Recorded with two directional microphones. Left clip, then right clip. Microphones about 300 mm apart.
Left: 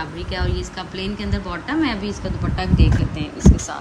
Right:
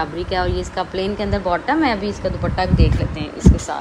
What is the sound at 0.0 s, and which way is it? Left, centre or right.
A woman's voice, centre.